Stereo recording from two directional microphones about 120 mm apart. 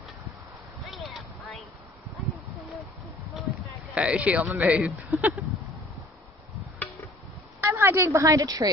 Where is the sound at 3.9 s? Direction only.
10° right (ahead or behind).